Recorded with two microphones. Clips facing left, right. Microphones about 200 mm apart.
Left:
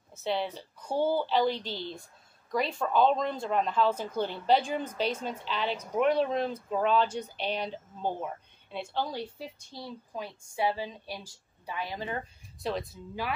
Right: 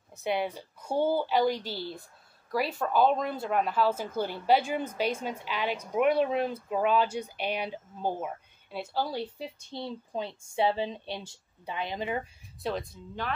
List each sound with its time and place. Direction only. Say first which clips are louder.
0.1 s speech: right 1 dB; 15° right (ahead or behind)
9.7 s a woman's voice: right 5 dB; 25° right (ahead or behind)
12.6 s speech: even; centre (ahead or behind)